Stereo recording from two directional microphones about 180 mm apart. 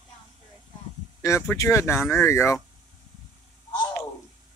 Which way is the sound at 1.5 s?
15° left (ahead or behind).